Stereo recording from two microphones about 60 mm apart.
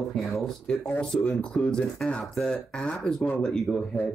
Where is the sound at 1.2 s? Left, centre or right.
Centre.